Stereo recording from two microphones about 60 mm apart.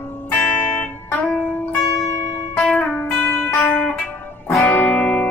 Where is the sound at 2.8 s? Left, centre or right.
Left.